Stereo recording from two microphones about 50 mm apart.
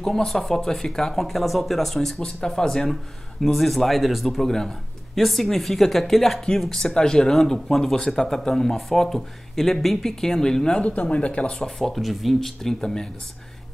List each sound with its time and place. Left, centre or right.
0.0 s speech: centre
2.1 s speech: centre
10.8 s speech: left
11.5 s speech: centre
12.4 s speech: centre